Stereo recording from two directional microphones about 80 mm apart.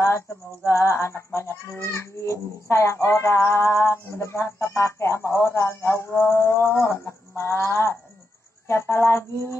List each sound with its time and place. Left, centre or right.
0.7 s music: left